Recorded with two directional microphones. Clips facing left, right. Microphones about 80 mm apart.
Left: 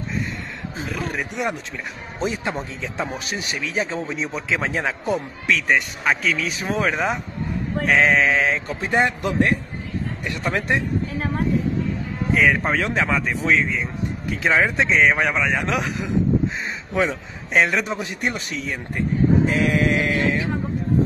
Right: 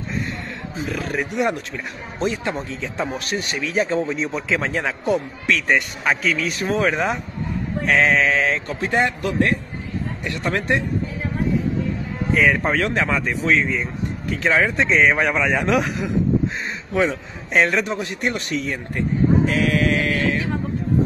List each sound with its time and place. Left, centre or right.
0.8 s a man's voice: centre
8.9 s a man's voice: centre
10.4 s a man's voice: centre
12.4 s a man's voice: centre
18.9 s sheep: centre